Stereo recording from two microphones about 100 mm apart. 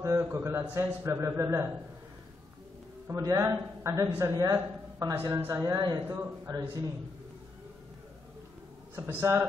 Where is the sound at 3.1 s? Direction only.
30° right (ahead or behind).